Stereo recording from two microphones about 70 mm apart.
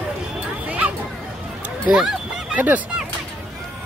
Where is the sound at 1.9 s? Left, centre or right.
Centre.